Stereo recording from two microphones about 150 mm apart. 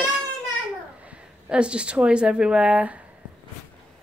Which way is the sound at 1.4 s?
5° right (ahead or behind).